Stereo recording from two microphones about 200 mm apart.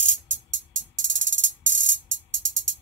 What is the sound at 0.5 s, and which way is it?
Music, 70° right (ahead or behind).